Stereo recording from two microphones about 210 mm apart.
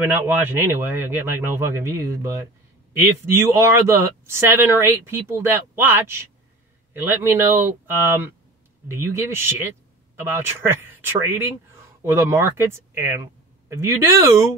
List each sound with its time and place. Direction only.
0.0 s speech: 10° right (ahead or behind)